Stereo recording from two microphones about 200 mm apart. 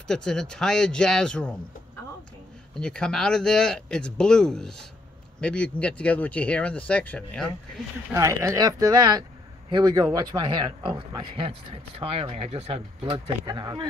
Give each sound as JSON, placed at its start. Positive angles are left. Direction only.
{"t": 0.1, "sound": "speech", "side_deg": 5}
{"t": 2.7, "sound": "speech", "side_deg": 5}
{"t": 8.1, "sound": "speech", "side_deg": -15}